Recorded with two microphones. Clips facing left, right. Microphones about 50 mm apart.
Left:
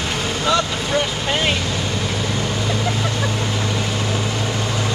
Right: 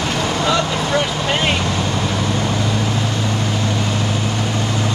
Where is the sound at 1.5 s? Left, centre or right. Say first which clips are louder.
Right 3 dB; right.